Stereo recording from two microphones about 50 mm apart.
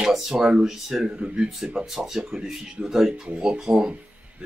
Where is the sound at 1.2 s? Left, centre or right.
Centre.